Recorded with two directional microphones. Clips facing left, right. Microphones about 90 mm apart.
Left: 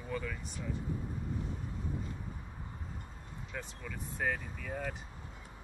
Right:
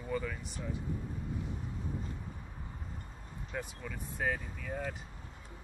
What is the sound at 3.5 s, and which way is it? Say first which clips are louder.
Speech: right 3 dB; 10° right (ahead or behind).